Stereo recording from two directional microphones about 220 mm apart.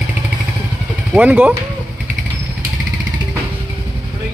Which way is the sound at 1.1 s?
5° right (ahead or behind).